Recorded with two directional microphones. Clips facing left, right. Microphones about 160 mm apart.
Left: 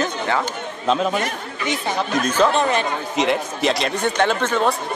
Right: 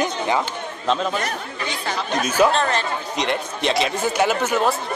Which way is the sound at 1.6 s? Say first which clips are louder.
Left 5 dB; 20° left (ahead or behind).